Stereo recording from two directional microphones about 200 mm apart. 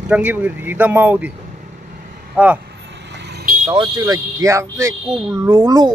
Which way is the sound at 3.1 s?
60° right (ahead or behind).